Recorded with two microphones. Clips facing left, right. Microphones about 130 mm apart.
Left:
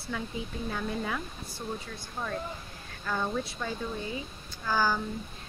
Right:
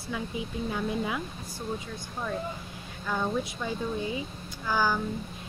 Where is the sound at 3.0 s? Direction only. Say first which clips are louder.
Right 2 dB; 10° right (ahead or behind).